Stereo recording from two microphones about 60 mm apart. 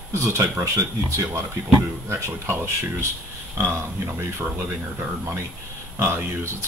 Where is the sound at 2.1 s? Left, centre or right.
Right.